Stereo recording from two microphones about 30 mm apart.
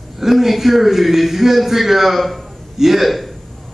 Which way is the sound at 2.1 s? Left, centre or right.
Centre.